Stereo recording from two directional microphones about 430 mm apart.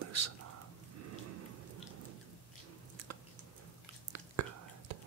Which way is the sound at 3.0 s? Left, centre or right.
Right.